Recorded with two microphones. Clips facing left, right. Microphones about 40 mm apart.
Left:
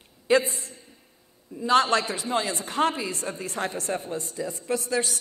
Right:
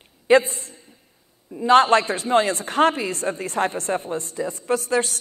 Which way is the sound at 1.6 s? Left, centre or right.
Right.